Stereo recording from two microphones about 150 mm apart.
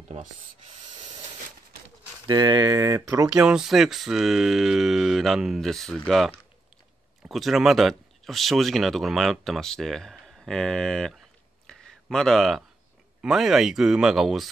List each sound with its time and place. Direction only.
2.2 s speech: 25° right (ahead or behind)
3.3 s speech: 5° right (ahead or behind)